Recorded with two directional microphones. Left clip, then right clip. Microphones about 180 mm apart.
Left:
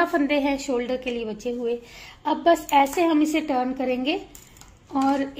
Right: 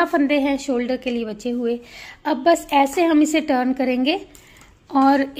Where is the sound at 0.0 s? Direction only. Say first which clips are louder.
Right 3 dB; 35° right (ahead or behind).